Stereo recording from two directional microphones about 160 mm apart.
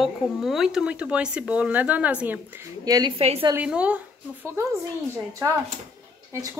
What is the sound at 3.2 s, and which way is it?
Speech, 40° right (ahead or behind).